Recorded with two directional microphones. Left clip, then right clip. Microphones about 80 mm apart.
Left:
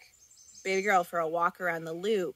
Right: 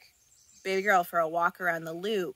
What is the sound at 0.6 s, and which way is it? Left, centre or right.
Speech, right.